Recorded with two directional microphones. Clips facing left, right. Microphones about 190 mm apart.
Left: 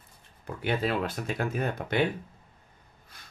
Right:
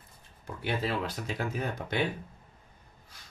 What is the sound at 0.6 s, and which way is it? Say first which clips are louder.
Speech: left 3 dB; 55° left (ahead or behind).